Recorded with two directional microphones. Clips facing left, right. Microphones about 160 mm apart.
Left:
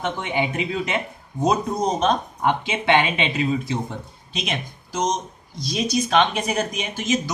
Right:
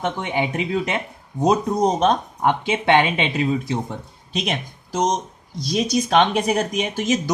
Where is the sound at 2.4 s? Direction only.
45° right (ahead or behind).